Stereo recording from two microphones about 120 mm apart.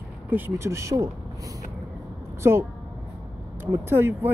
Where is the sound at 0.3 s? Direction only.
20° right (ahead or behind).